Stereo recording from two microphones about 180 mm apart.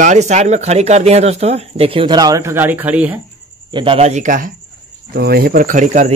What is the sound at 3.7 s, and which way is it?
Speech, 30° right (ahead or behind).